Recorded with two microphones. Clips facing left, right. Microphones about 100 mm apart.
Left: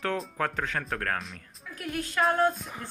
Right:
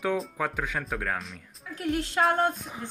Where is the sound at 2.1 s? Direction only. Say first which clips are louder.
Left 1 dB; 25° right (ahead or behind).